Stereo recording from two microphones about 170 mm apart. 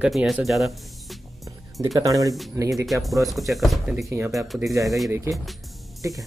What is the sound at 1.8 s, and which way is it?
Speech, 20° right (ahead or behind).